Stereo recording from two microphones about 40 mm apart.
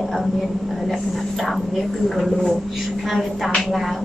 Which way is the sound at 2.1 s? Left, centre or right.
Centre.